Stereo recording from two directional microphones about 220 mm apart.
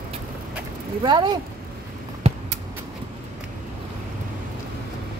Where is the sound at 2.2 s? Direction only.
25° right (ahead or behind).